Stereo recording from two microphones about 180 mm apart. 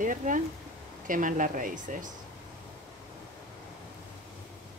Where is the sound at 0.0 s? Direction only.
45° right (ahead or behind).